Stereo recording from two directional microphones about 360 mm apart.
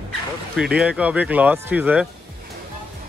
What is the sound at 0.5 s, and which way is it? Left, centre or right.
Speech, centre.